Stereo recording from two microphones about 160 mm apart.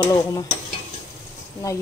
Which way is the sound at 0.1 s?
25° left (ahead or behind).